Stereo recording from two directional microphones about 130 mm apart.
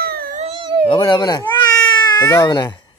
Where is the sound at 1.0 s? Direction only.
30° left (ahead or behind).